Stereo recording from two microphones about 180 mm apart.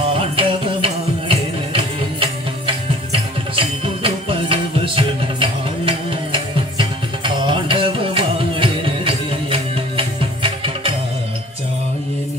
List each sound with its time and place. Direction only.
0.4 s music: 30° right (ahead or behind)